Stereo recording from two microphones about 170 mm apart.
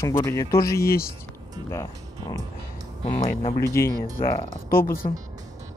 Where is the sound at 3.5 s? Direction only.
15° left (ahead or behind).